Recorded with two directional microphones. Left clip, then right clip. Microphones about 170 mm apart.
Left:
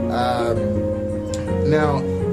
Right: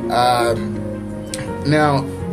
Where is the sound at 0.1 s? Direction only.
20° right (ahead or behind).